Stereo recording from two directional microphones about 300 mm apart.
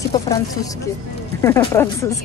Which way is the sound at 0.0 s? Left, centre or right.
Centre.